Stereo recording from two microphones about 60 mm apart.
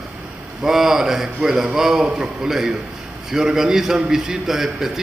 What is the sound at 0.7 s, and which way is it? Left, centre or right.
A man's voice, centre.